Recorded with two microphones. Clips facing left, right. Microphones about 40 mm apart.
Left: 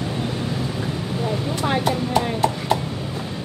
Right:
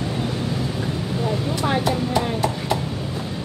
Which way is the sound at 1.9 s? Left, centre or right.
Left.